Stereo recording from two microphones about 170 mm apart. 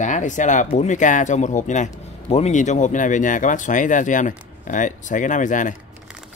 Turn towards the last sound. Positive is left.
turn(degrees=50)  # may be behind; listen again after turning